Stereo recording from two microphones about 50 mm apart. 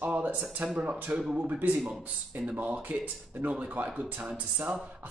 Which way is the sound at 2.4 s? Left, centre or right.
Right.